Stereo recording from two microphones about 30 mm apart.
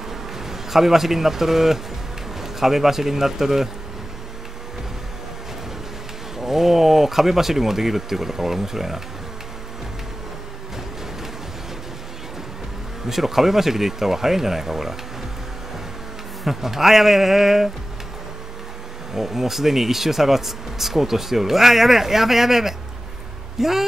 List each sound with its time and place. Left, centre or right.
0.1 s a man's voice: centre
6.3 s speech: centre
13.1 s speech: centre
16.4 s speech: centre
19.1 s speech: centre